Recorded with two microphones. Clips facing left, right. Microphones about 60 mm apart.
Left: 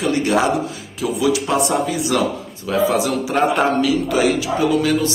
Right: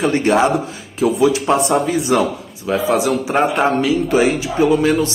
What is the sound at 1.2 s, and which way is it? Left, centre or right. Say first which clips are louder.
A man's voice: right 1 dB; right.